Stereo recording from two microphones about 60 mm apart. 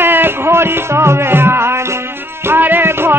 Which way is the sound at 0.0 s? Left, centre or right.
Right.